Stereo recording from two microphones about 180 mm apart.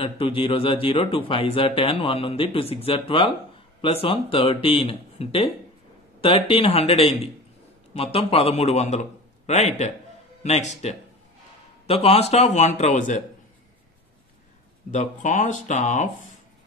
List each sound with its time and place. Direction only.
0.0 s speech: 30° left (ahead or behind)
14.9 s speech: 45° left (ahead or behind)